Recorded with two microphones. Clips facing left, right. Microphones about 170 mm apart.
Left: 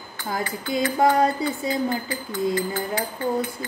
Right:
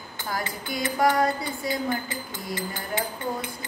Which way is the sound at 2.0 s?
20° right (ahead or behind).